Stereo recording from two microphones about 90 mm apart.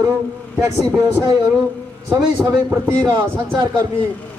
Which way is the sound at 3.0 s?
60° right (ahead or behind).